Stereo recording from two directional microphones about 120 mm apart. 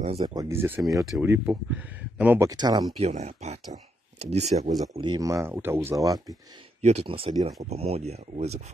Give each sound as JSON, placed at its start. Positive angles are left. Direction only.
{"t": 0.2, "sound": "speech", "side_deg": -35}
{"t": 0.5, "sound": "speech", "side_deg": -20}
{"t": 2.4, "sound": "speech", "side_deg": -35}
{"t": 3.0, "sound": "speech", "side_deg": -65}
{"t": 5.0, "sound": "speech", "side_deg": -40}
{"t": 5.3, "sound": "speech", "side_deg": -20}
{"t": 6.0, "sound": "speech", "side_deg": -30}
{"t": 6.8, "sound": "speech", "side_deg": -65}